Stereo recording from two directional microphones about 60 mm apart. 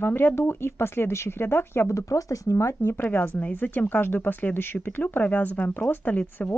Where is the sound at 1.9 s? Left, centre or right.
Left.